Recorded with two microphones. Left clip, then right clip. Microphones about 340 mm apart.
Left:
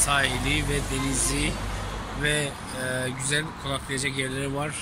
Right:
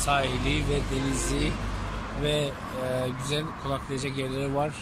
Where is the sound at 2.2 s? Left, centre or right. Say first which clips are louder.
Left 1 dB; centre.